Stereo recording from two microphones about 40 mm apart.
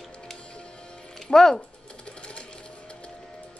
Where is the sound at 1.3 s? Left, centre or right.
Centre.